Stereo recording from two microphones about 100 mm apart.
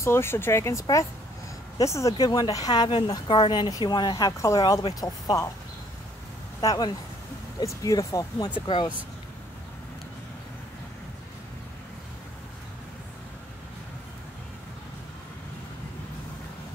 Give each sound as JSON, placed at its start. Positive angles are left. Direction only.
{"t": 0.0, "sound": "speech", "side_deg": 25}
{"t": 4.3, "sound": "speech", "side_deg": 30}
{"t": 6.6, "sound": "speech", "side_deg": 40}
{"t": 8.6, "sound": "speech", "side_deg": 55}